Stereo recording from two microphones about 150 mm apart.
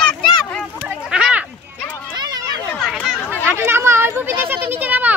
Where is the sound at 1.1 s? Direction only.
5° right (ahead or behind).